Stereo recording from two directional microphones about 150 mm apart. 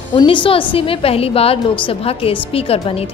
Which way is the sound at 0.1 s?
35° left (ahead or behind).